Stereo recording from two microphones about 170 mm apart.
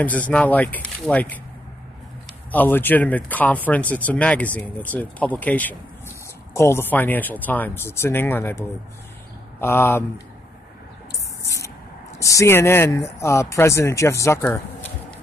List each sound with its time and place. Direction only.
0.3 s speech: 10° left (ahead or behind)
2.5 s speech: 10° left (ahead or behind)
11.4 s spray: 20° left (ahead or behind)
12.2 s speech: 20° left (ahead or behind)